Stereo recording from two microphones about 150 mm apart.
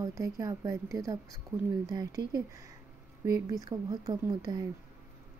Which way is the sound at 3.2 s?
20° right (ahead or behind).